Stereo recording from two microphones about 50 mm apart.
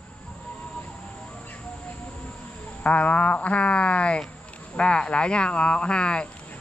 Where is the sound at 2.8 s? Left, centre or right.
Left.